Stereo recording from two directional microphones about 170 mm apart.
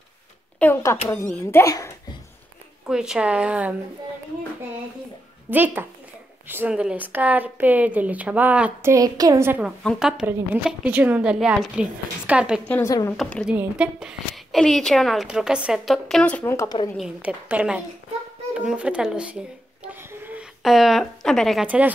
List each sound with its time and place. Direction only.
0.6 s a child's voice: 10° left (ahead or behind)
2.9 s speech: 5° right (ahead or behind)
5.5 s speech: 10° right (ahead or behind)
8.9 s a woman's voice: 20° right (ahead or behind)
9.6 s a woman's voice: centre (ahead or behind)
12.6 s a child's voice: 10° left (ahead or behind)
13.5 s a woman's voice: 5° right (ahead or behind); by 16.7 s 15° left (ahead or behind)
16.9 s a woman's voice: 5° right (ahead or behind)
19.8 s a sound: 10° right (ahead or behind)
20.6 s a woman's voice: centre (ahead or behind)